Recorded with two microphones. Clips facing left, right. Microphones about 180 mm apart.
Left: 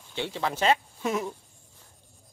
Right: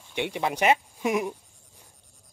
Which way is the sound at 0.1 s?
15° right (ahead or behind).